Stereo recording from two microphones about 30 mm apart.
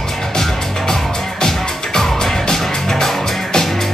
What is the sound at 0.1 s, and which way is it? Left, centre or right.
Music, centre.